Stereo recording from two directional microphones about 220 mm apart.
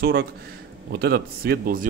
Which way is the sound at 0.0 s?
45° right (ahead or behind).